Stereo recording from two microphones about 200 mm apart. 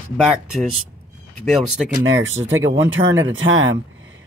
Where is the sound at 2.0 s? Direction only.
75° right (ahead or behind).